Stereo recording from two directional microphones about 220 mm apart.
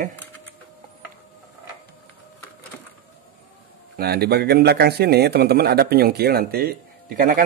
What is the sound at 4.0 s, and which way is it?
A man's voice, 45° right (ahead or behind).